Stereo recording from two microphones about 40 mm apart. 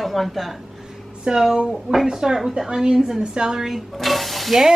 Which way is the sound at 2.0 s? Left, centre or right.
Centre.